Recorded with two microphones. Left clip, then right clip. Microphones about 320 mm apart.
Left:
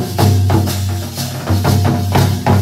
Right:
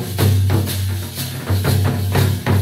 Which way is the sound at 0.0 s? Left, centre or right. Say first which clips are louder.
Left 6 dB; centre.